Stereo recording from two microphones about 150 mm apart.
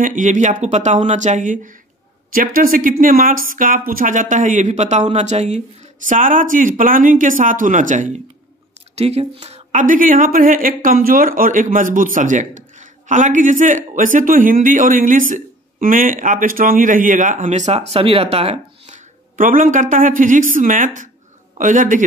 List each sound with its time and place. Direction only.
0.0 s speech: 60° right (ahead or behind)
2.3 s speech: 70° right (ahead or behind); by 5.6 s 50° right (ahead or behind)
6.0 s speech: 60° right (ahead or behind)
8.9 s speech: 45° right (ahead or behind)
9.7 s speech: 60° right (ahead or behind)